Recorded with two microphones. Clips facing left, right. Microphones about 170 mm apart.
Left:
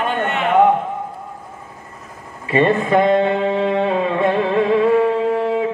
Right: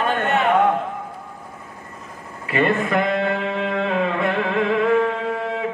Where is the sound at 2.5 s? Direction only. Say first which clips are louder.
Left 5 dB; 30° left (ahead or behind).